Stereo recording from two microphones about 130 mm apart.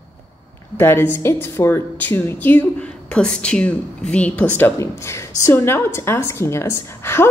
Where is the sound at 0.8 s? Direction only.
15° left (ahead or behind).